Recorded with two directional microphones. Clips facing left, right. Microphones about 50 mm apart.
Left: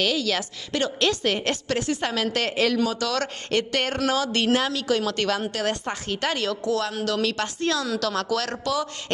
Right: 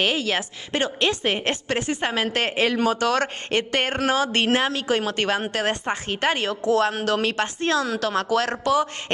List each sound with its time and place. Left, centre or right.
0.0 s a woman's voice: right